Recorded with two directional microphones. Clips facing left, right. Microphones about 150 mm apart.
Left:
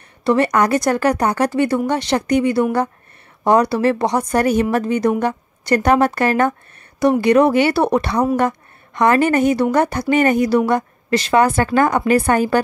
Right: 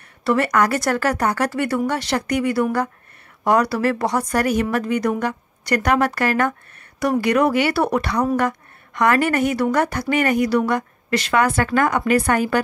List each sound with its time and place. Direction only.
0.2 s a woman's voice: 20° left (ahead or behind)